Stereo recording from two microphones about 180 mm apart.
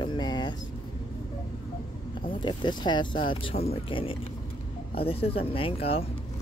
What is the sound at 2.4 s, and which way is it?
Speech, 25° left (ahead or behind).